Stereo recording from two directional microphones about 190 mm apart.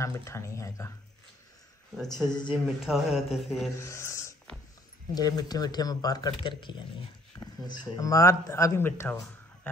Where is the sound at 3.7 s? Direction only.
15° left (ahead or behind).